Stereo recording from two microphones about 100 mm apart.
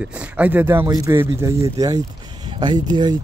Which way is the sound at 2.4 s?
45° right (ahead or behind).